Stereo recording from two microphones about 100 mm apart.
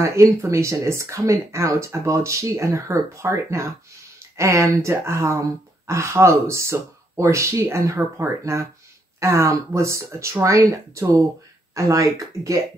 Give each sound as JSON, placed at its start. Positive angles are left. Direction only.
{"t": 0.0, "sound": "speech", "side_deg": -30}